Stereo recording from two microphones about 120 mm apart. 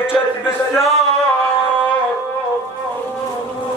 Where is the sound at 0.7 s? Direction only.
Centre (ahead or behind).